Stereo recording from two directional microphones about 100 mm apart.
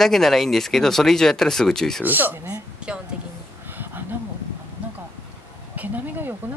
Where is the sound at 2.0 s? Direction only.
20° right (ahead or behind).